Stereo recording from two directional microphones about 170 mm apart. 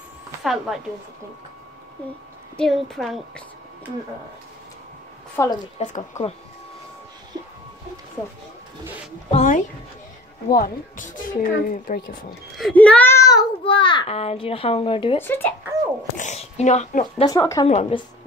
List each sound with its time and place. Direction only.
0.4 s speech: centre (ahead or behind)
2.5 s a woman's voice: 5° left (ahead or behind)
5.3 s a woman's voice: 20° left (ahead or behind)
5.8 s speech: 40° left (ahead or behind)
9.3 s speech: 45° left (ahead or behind)
12.5 s a child's voice: 5° left (ahead or behind); by 15.2 s 30° left (ahead or behind)
15.2 s speech: 10° left (ahead or behind)
16.2 s speech: 40° left (ahead or behind)
17.3 s speech: 20° left (ahead or behind)
17.6 s a woman's voice: 40° left (ahead or behind)